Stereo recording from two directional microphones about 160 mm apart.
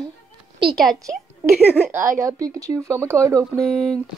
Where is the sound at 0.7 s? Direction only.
Centre (ahead or behind); by 3.6 s 20° right (ahead or behind).